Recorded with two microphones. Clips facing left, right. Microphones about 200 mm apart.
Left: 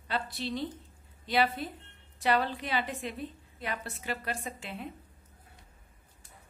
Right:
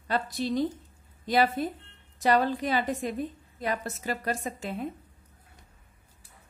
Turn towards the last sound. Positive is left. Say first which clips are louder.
# right 7 dB
turn(degrees=-45)  # may be behind; listen again after turning